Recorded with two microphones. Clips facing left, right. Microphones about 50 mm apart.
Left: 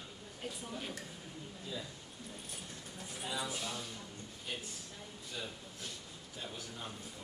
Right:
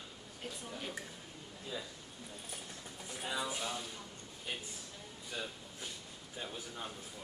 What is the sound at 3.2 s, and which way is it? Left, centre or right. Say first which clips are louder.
Speech: right 2 dB; centre.